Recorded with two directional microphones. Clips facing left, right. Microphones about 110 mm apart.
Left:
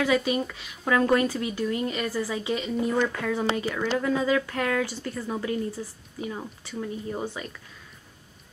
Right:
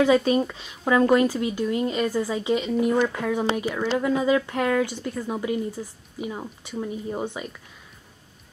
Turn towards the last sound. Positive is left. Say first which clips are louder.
# right 2 dB
turn(degrees=-15)  # may be behind; listen again after turning